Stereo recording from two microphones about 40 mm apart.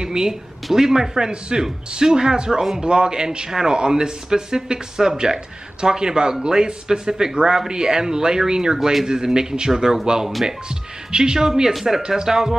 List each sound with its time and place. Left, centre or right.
0.0 s a man's voice: centre
8.7 s speech: centre
9.0 s speech: centre